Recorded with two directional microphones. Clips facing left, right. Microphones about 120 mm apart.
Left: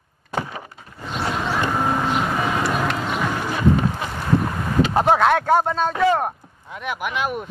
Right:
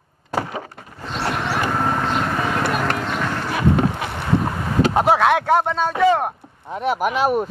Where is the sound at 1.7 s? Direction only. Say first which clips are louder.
Even; 10° left (ahead or behind).